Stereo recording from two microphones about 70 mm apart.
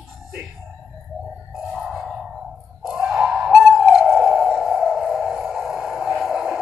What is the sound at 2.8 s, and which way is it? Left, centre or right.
Bird, centre.